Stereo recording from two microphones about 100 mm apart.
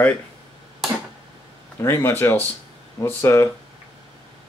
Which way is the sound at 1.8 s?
25° left (ahead or behind).